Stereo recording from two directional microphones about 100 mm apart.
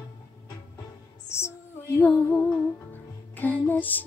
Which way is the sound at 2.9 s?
15° left (ahead or behind).